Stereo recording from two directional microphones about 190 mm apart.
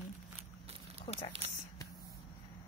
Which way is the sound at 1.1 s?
30° left (ahead or behind).